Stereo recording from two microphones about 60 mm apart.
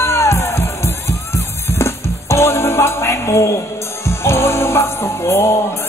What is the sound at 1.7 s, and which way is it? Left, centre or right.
Music, left.